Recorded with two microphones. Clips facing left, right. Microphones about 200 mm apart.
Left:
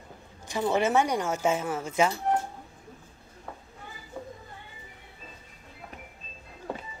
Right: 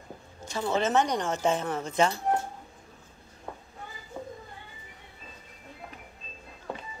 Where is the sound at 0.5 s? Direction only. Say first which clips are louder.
Left 2 dB; 15° left (ahead or behind).